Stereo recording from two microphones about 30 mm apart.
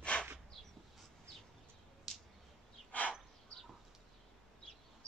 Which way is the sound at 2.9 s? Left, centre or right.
Left.